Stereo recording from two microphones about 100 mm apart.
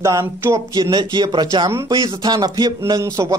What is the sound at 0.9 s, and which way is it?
Speech, 45° right (ahead or behind).